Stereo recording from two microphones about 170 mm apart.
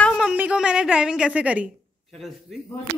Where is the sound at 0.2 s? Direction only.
5° right (ahead or behind).